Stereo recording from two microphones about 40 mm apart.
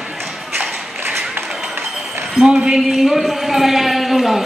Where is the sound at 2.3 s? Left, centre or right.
Centre.